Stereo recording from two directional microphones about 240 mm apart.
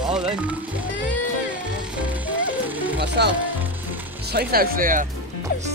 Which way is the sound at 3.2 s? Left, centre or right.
Right.